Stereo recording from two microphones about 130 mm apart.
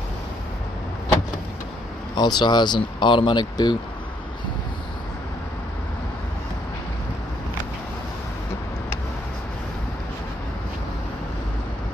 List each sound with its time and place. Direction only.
2.1 s speech: 35° left (ahead or behind)